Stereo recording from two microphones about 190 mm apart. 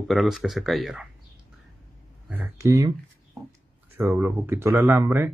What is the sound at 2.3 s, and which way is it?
Speech, 10° right (ahead or behind).